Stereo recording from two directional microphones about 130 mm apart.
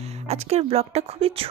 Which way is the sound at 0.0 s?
55° right (ahead or behind).